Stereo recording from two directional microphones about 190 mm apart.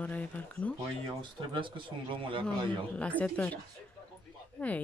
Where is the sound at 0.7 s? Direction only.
25° right (ahead or behind).